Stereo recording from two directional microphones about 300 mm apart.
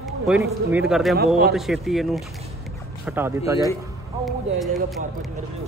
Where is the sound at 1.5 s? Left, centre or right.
Centre.